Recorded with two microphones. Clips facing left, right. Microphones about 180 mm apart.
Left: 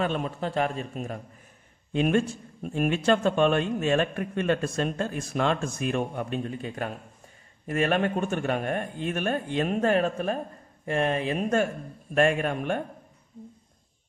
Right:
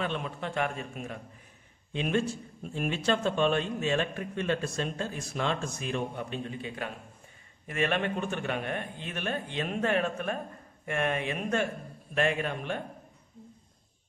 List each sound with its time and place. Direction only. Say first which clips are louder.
0.0 s a man's voice: left 5 dB; 40° left (ahead or behind)
1.9 s speech: left 5 dB; 50° left (ahead or behind)